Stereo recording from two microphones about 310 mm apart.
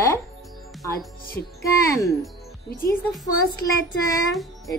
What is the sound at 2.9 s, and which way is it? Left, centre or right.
Speech, centre.